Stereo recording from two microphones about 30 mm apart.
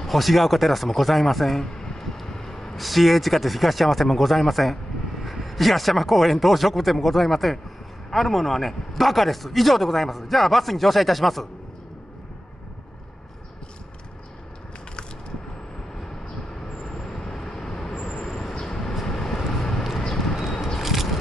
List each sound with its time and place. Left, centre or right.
0.0 s a man's voice: centre
2.1 s vehicle: centre
2.8 s a man's voice: centre
17.3 s vehicle: centre
20.2 s a sound: centre